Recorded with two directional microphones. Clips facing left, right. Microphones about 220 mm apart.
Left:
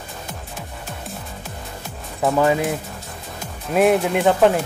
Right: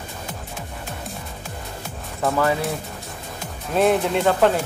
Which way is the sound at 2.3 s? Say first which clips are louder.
Left 4 dB; 15° left (ahead or behind).